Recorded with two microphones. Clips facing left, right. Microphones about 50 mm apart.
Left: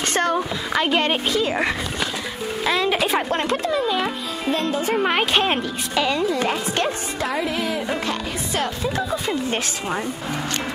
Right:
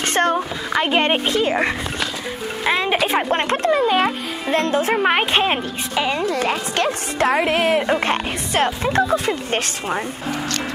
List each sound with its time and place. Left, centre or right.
0.0 s a sound: right
0.4 s speech: centre
0.9 s speech: right
2.6 s speech: right
3.3 s speech: right
4.9 s speech: right
5.4 s speech: centre
6.2 s a woman's voice: right
8.0 s music: right
9.3 s speech: right